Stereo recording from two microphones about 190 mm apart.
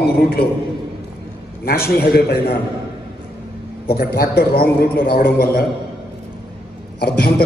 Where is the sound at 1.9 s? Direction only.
55° left (ahead or behind).